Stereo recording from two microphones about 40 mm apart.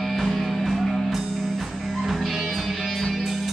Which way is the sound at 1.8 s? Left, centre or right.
Centre.